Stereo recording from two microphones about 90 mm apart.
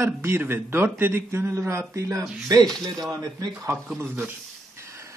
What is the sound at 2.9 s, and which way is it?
Speech, 45° right (ahead or behind).